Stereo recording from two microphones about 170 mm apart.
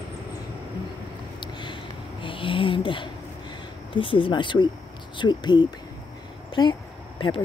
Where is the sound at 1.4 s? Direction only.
30° left (ahead or behind).